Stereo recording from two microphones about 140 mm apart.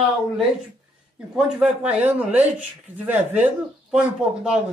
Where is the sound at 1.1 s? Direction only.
5° right (ahead or behind).